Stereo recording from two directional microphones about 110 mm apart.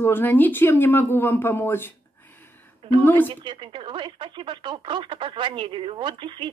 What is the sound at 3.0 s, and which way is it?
Speech, 20° left (ahead or behind).